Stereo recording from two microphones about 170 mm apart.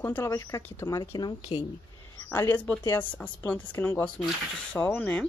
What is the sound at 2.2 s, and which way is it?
Speech, 10° left (ahead or behind).